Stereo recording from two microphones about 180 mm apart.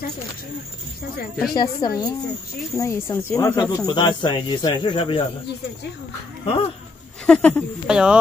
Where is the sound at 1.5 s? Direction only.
25° left (ahead or behind).